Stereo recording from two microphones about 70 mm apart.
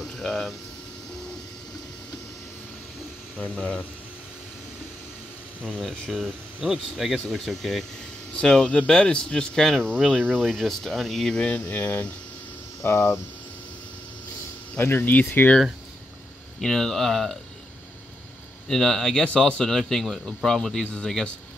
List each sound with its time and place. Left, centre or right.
0.0 s a sound: centre
3.3 s speech: left
5.6 s speech: centre
6.6 s speech: centre
12.8 s speech: left
14.8 s speech: left
16.6 s speech: centre
18.7 s speech: centre
20.8 s speech: centre